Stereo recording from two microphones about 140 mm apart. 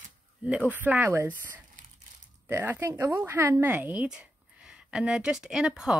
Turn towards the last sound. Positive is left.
turn(degrees=-5)  # may be behind; listen again after turning